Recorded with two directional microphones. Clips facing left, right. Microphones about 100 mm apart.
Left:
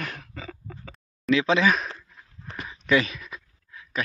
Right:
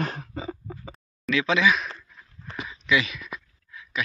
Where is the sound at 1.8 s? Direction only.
20° left (ahead or behind).